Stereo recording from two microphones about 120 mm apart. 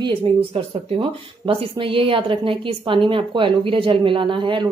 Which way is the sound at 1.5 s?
50° right (ahead or behind).